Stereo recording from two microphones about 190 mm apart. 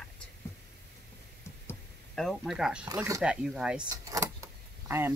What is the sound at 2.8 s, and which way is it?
Speech, 20° right (ahead or behind).